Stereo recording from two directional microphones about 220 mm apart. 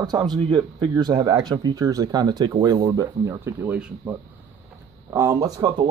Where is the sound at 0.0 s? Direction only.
20° right (ahead or behind).